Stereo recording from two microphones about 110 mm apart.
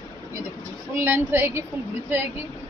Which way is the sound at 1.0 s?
20° right (ahead or behind).